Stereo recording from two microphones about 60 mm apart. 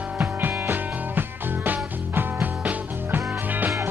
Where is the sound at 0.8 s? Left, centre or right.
Right.